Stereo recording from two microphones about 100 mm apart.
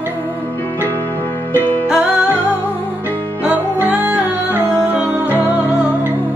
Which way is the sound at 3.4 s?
15° right (ahead or behind).